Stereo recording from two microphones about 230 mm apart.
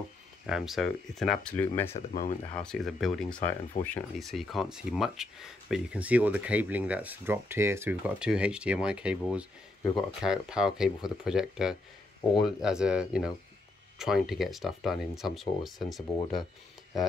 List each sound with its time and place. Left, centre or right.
0.5 s speech: centre
2.0 s speech: left
2.5 s speech: centre